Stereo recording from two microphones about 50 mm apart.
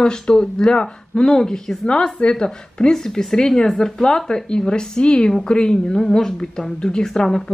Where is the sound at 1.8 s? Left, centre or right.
Left.